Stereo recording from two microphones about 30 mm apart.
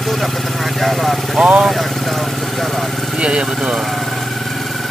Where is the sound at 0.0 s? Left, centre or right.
Centre.